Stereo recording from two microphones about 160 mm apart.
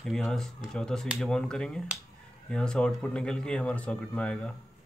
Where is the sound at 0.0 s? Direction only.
Centre (ahead or behind).